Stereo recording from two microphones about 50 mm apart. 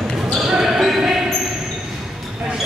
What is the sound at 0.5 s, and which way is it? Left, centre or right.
Basketball bounce, centre.